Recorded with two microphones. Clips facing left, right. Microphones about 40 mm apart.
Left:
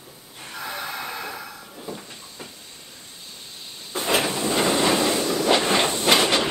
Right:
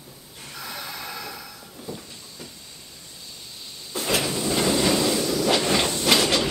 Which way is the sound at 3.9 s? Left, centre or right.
Left.